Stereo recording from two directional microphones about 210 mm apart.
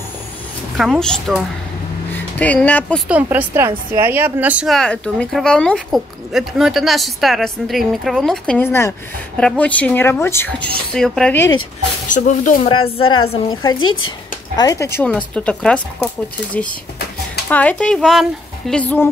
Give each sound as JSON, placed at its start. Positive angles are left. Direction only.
{"t": 0.7, "sound": "a woman's voice", "side_deg": 0}
{"t": 3.1, "sound": "a woman's voice", "side_deg": -5}
{"t": 12.1, "sound": "speech", "side_deg": 40}
{"t": 12.6, "sound": "speech", "side_deg": 25}
{"t": 13.7, "sound": "speech", "side_deg": 75}
{"t": 14.6, "sound": "speech", "side_deg": 15}
{"t": 17.5, "sound": "a woman's voice", "side_deg": 5}